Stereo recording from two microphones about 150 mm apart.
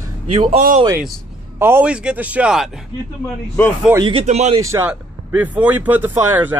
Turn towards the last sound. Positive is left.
turn(degrees=-15)  # may be behind; listen again after turning